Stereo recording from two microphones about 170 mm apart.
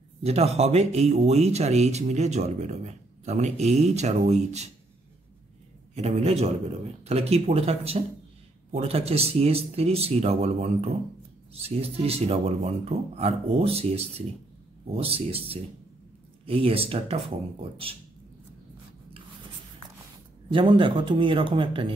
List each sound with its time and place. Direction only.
0.2 s speech: 40° right (ahead or behind)
5.9 s speech: 40° right (ahead or behind)
20.5 s speech: 30° right (ahead or behind)